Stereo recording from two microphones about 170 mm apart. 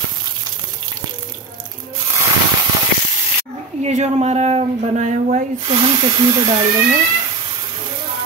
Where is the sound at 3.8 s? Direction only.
40° right (ahead or behind).